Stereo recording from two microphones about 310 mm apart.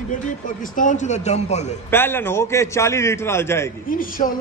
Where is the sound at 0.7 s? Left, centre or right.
Left.